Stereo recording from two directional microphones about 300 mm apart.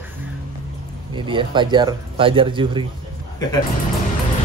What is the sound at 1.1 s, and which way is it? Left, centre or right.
Speech, centre.